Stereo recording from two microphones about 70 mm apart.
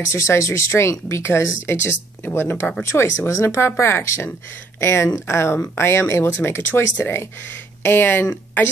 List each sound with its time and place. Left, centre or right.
0.1 s speech: left